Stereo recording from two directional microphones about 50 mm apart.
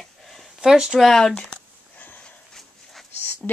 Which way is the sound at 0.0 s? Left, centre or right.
Centre.